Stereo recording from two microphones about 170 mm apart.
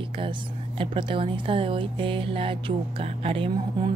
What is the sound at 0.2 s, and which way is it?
A woman's voice, 30° right (ahead or behind).